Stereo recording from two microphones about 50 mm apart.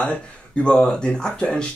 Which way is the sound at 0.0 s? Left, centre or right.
Left.